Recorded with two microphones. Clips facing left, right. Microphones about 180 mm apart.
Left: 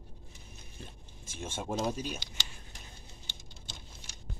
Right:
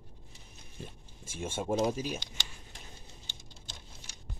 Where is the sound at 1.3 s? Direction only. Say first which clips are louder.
Right 4 dB; 10° right (ahead or behind).